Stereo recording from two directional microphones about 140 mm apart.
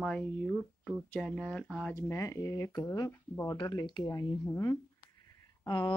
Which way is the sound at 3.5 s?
35° left (ahead or behind).